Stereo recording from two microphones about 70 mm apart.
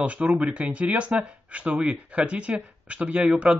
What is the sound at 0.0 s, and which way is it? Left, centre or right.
Speech, centre.